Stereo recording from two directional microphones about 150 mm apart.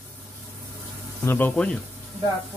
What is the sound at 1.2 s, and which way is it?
Speech, 15° left (ahead or behind).